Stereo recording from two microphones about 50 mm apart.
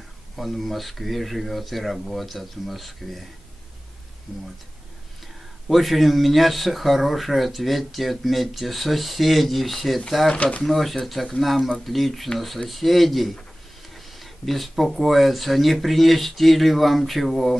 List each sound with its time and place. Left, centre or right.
0.4 s speech: centre
5.7 s speech: centre
10.3 s speech: left
10.6 s speech: centre